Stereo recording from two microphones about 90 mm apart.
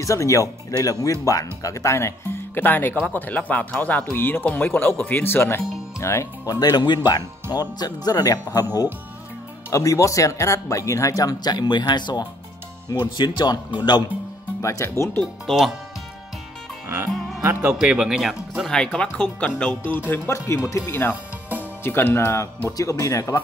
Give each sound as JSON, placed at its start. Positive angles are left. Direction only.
{"t": 0.0, "sound": "speech", "side_deg": 35}
{"t": 14.6, "sound": "speech", "side_deg": 35}
{"t": 15.4, "sound": "speech", "side_deg": 0}
{"t": 17.7, "sound": "speech", "side_deg": -10}
{"t": 18.9, "sound": "speech", "side_deg": 15}
{"t": 21.1, "sound": "music", "side_deg": -20}
{"t": 21.8, "sound": "speech", "side_deg": 25}
{"t": 22.8, "sound": "speech", "side_deg": 40}